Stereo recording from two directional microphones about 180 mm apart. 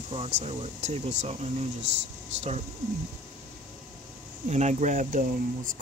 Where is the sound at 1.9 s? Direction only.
75° right (ahead or behind).